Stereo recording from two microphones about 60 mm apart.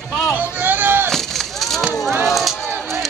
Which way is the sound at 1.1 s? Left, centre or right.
Centre.